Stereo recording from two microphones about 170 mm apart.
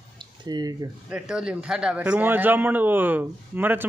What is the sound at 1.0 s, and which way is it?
Speech, 5° right (ahead or behind).